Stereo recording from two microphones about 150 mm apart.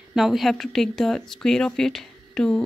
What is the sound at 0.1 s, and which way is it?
A woman's voice, centre (ahead or behind).